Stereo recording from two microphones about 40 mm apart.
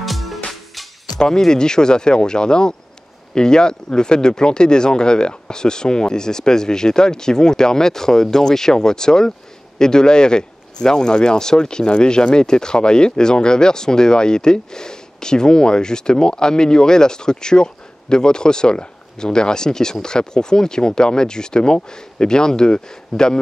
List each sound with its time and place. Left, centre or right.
0.0 s music: centre
1.2 s speech: centre